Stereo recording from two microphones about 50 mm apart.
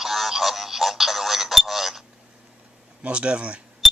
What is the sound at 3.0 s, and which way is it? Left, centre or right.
Speech, right.